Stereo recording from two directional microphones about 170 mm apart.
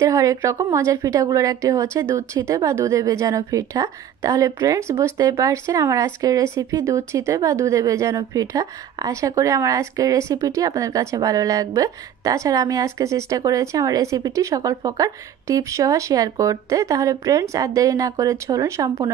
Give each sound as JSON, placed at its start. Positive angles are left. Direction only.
{"t": 0.0, "sound": "a woman's voice", "side_deg": -20}